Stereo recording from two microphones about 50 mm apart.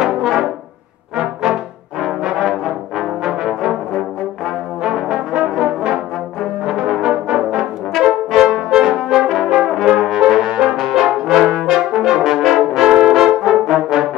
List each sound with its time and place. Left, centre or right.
0.0 s brass instrument: centre
4.8 s brass instrument: centre